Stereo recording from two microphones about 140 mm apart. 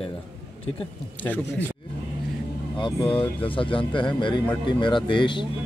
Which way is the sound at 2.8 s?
40° left (ahead or behind).